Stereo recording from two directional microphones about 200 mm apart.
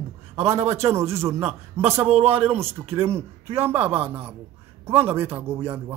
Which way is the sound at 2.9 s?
10° right (ahead or behind).